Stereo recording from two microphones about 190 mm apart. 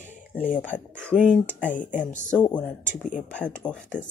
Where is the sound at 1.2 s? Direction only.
5° left (ahead or behind).